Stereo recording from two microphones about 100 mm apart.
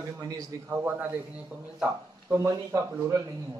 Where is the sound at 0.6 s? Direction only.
20° right (ahead or behind).